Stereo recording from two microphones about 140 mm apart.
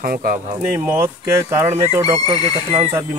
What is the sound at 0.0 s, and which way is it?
Speech, 90° right.